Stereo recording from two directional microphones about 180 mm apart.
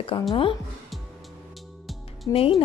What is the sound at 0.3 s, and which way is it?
Speech, 30° left (ahead or behind).